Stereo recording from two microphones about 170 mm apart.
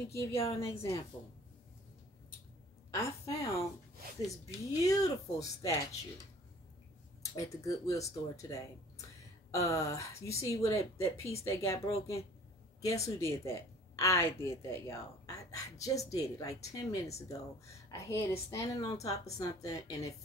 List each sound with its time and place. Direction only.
0.1 s speech: 15° left (ahead or behind)
2.9 s a woman's voice: 15° left (ahead or behind)
4.8 s speech: 20° left (ahead or behind)
7.2 s speech: 20° left (ahead or behind)